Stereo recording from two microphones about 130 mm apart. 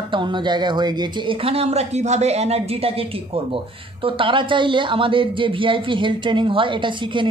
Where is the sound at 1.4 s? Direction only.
50° right (ahead or behind).